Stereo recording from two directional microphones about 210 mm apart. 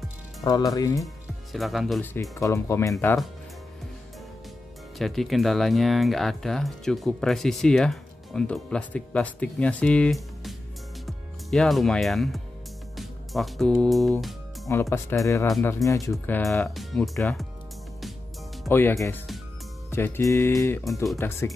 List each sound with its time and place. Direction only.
0.4 s speech: 20° left (ahead or behind)
1.0 s speech: centre (ahead or behind)
2.3 s speech: 15° left (ahead or behind)
4.9 s speech: centre (ahead or behind)
14.7 s speech: 10° left (ahead or behind)
18.7 s speech: 10° left (ahead or behind)